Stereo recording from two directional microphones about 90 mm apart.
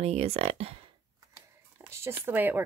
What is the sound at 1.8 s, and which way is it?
Speech, 30° right (ahead or behind).